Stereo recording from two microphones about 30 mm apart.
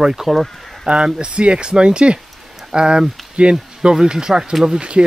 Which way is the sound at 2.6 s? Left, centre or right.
Right.